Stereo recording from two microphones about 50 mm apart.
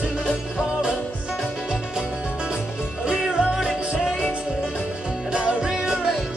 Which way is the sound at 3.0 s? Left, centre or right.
Centre.